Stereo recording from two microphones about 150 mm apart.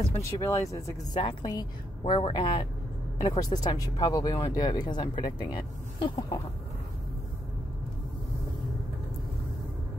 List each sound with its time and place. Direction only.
0.2 s a woman's voice: 20° left (ahead or behind)